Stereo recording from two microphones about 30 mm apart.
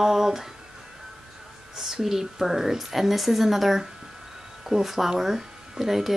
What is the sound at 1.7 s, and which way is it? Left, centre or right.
A woman's voice, centre.